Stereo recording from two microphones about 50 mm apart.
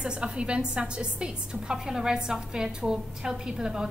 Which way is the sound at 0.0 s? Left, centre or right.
Centre.